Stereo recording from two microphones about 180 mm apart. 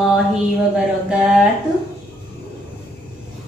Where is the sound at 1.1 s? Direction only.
5° right (ahead or behind).